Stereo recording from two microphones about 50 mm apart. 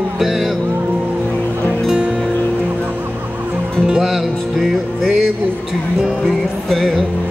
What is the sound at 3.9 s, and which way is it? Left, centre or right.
Music, centre.